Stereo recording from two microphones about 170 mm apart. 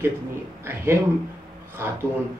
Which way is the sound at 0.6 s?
15° right (ahead or behind).